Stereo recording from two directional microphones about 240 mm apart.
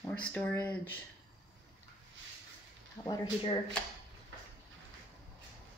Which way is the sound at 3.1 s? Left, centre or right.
Centre.